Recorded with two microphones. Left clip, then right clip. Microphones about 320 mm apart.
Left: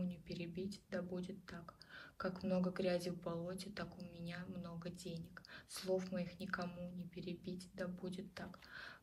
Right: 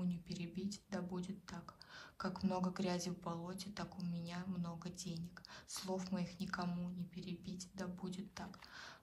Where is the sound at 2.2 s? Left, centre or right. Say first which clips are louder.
Left 1 dB; centre.